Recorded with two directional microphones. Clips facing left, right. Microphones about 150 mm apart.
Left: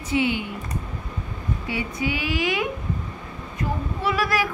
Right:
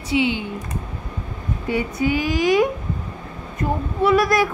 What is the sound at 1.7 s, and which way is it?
Speech, 45° right (ahead or behind).